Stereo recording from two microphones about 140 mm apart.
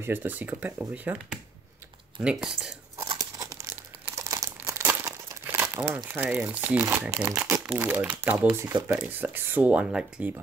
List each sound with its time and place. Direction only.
0.0 s speech: 15° right (ahead or behind)
3.2 s crumpling: 25° right (ahead or behind)
6.0 s speech: 15° right (ahead or behind)